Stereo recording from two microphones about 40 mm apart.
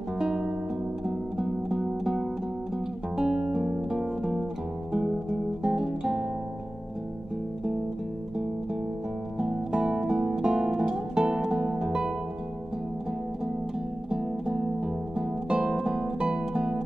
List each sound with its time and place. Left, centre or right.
0.2 s music: centre
9.7 s music: centre
14.1 s music: centre